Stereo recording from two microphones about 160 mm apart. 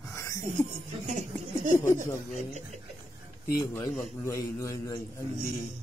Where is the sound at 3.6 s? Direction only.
25° left (ahead or behind).